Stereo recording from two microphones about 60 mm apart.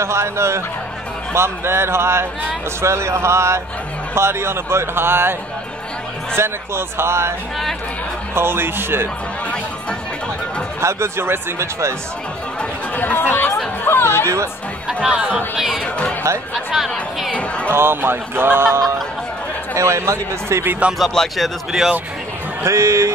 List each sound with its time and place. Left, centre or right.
0.0 s speech: right
6.3 s speech: right
8.4 s speech: right
10.8 s speech: right
12.9 s speech: left
14.2 s a man's voice: right
14.9 s speech: centre
15.8 s speech: centre
16.7 s speech: centre
17.3 s speech: centre
17.6 s speech: right
19.7 s speech: right
21.0 s speech: centre
22.6 s a man's voice: right